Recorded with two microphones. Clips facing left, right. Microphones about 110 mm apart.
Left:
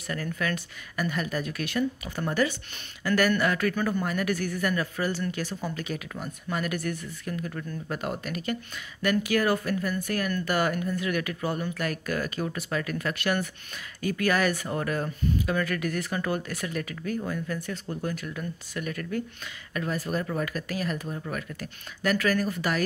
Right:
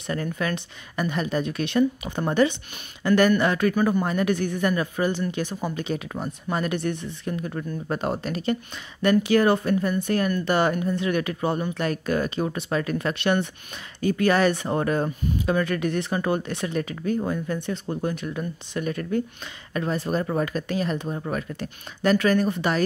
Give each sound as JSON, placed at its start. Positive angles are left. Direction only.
{"t": 0.0, "sound": "speech", "side_deg": -25}